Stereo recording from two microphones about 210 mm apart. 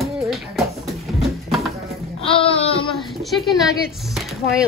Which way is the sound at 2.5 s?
25° left (ahead or behind).